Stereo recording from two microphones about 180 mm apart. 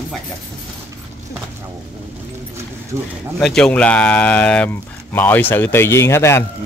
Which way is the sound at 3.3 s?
5° left (ahead or behind).